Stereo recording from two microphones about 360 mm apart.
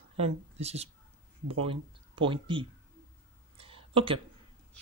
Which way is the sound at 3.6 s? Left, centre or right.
Centre.